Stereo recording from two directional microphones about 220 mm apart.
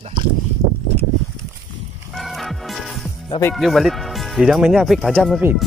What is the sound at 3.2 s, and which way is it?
Speech, 20° left (ahead or behind).